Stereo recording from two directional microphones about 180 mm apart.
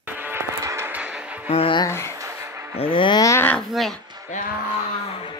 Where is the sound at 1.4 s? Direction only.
30° left (ahead or behind).